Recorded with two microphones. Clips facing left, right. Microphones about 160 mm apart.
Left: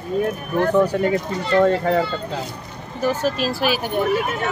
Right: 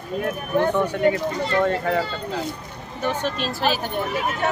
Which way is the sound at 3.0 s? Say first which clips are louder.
Left 4 dB; 5° left (ahead or behind).